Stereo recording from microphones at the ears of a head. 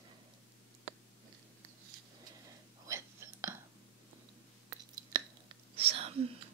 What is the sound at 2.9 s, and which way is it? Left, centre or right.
Whispering, right.